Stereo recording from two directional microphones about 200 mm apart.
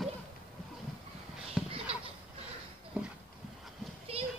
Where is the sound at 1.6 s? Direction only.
30° right (ahead or behind).